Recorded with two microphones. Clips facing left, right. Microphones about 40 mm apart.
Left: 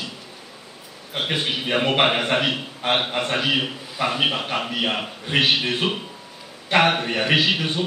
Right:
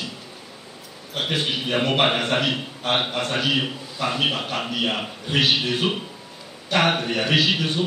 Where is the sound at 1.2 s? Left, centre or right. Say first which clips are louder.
Even; centre.